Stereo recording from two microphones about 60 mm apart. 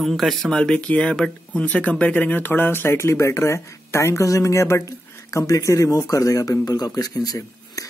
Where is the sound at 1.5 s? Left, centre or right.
Left.